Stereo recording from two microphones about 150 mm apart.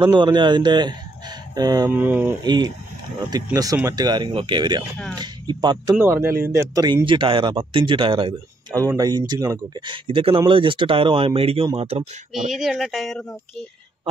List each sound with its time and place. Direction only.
0.0 s speech: 30° right (ahead or behind)
1.9 s speech: 15° right (ahead or behind)
2.4 s speech: 30° right (ahead or behind)
5.9 s speech: 15° right (ahead or behind); by 8.4 s 35° right (ahead or behind)
8.7 s speech: 25° right (ahead or behind)
9.8 s speech: 35° right (ahead or behind)
12.5 s speech: centre (ahead or behind)